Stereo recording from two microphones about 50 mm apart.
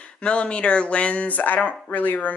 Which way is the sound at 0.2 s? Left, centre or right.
Left.